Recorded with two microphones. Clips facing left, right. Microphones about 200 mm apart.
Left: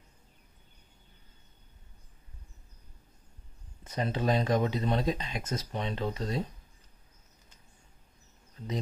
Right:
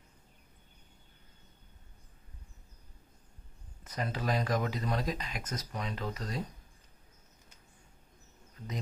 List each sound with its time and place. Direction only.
3.8 s speech: 25° left (ahead or behind)